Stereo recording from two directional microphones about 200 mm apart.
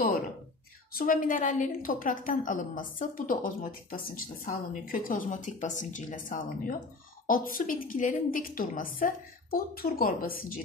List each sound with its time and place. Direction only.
0.9 s a woman's voice: 45° left (ahead or behind)